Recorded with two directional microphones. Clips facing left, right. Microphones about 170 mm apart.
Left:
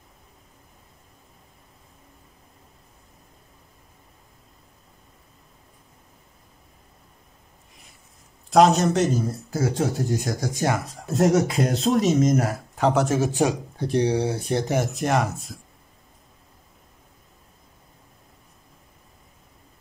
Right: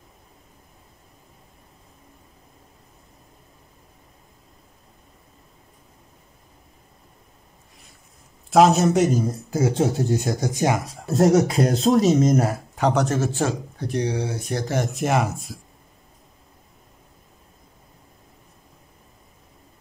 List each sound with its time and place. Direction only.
8.5 s speech: 5° right (ahead or behind); by 10.8 s 20° right (ahead or behind)
11.1 s speech: 35° right (ahead or behind)
12.7 s speech: 5° left (ahead or behind)
13.7 s speech: 30° left (ahead or behind)
15.0 s speech: 5° right (ahead or behind)